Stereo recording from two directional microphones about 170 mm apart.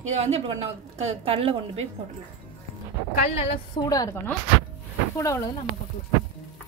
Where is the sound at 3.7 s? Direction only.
20° left (ahead or behind).